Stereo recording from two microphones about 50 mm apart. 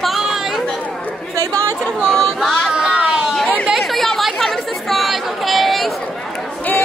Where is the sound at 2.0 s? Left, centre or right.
Centre.